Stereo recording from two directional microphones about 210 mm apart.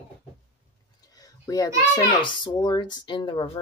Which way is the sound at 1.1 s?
15° left (ahead or behind).